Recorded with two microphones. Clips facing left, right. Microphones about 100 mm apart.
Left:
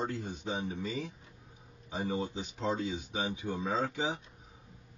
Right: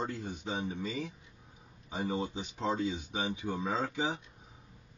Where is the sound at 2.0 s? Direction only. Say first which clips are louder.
Even; 15° right (ahead or behind).